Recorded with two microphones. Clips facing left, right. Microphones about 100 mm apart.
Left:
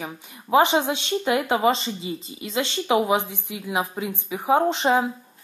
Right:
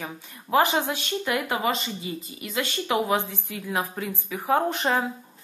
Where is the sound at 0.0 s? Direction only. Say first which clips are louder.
Left 2 dB; 20° left (ahead or behind).